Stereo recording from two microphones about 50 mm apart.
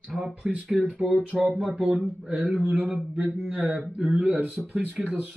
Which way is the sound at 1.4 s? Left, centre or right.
Centre.